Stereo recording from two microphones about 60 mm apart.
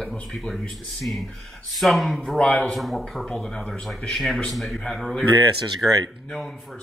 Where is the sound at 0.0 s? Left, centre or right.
Centre.